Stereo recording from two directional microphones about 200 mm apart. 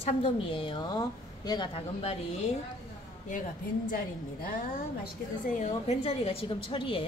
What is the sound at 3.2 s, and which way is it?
A woman's voice, 40° left (ahead or behind).